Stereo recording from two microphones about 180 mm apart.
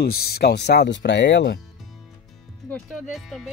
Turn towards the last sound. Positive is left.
turn(degrees=0)  # may be behind; listen again after turning